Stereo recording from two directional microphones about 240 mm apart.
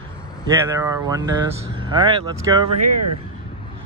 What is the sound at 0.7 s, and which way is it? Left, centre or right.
Speech, centre.